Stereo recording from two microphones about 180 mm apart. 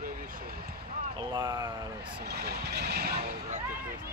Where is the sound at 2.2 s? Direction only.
60° right (ahead or behind).